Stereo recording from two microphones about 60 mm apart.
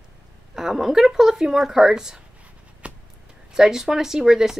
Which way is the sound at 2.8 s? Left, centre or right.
Centre.